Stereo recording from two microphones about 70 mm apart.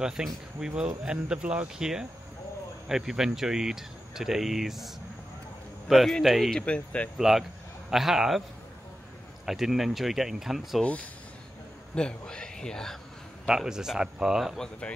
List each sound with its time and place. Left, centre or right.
0.0 s speech: centre
6.5 s speech: centre
7.2 s speech: centre
9.5 s speech: centre
10.8 s speech: left
13.5 s speech: centre
14.6 s speech: centre